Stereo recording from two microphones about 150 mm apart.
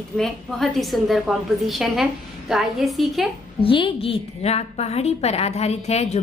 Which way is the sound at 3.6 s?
35° left (ahead or behind).